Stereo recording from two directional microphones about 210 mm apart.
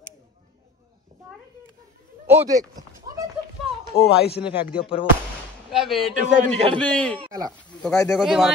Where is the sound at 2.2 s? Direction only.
10° right (ahead or behind).